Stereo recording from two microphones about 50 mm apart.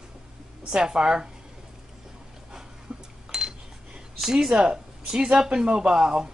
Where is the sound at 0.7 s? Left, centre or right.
Centre.